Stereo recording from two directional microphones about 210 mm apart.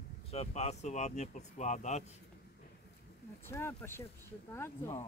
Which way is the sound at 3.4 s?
10° left (ahead or behind).